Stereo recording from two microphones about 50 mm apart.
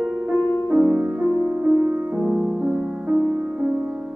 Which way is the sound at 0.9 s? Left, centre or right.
Right.